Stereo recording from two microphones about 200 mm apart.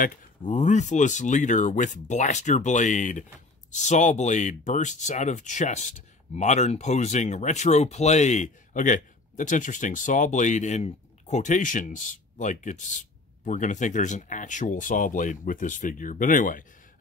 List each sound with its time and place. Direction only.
0.0 s speech: 40° left (ahead or behind)